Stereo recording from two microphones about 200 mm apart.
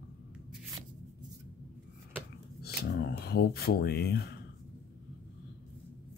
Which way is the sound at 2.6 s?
55° left (ahead or behind).